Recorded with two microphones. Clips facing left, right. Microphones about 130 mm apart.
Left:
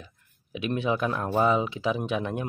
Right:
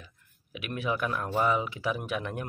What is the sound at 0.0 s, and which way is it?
Speech, 25° left (ahead or behind).